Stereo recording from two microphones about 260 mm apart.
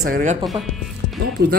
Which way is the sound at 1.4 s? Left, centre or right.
Right.